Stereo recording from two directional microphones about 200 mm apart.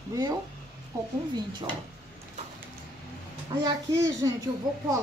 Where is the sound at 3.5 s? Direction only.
20° right (ahead or behind).